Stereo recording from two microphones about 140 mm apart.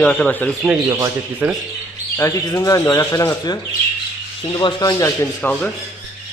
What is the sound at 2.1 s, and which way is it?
A man's voice, 20° left (ahead or behind).